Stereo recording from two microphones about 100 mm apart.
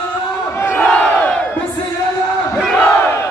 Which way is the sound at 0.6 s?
20° left (ahead or behind).